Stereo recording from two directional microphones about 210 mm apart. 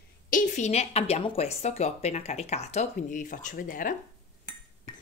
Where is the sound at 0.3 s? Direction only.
40° left (ahead or behind).